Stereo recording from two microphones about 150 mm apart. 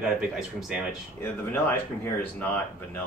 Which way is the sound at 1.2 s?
15° left (ahead or behind).